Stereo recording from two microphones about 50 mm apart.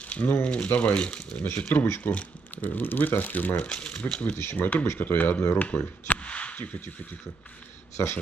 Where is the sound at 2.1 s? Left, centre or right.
Left.